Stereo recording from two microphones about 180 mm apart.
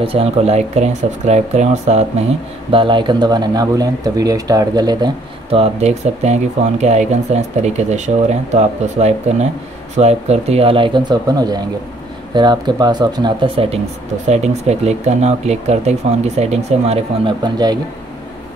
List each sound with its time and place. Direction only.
0.0 s speech: 30° right (ahead or behind)